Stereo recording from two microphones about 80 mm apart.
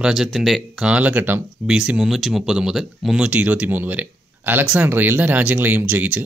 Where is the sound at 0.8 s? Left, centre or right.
Centre.